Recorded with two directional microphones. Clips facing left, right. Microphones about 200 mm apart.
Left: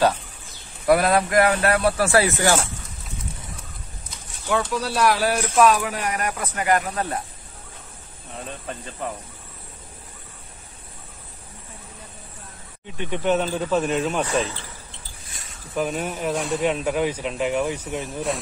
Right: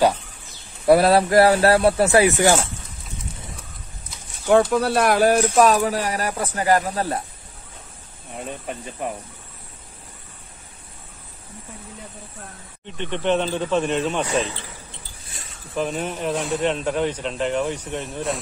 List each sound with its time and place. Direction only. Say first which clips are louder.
0.8 s speech: right 4 dB; 30° right (ahead or behind); by 2.5 s 15° right (ahead or behind)
4.5 s speech: right 7 dB; 50° right (ahead or behind)
5.6 s speech: left 3 dB; 35° right (ahead or behind)
8.6 s speech: right 1 dB; 15° right (ahead or behind)
12.8 s speech: even; 10° left (ahead or behind)
15.7 s speech: even; 5° left (ahead or behind)